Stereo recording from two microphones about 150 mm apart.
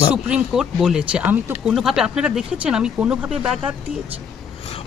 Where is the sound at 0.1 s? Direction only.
5° right (ahead or behind).